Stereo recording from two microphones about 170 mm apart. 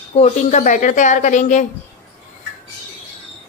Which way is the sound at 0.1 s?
45° left (ahead or behind).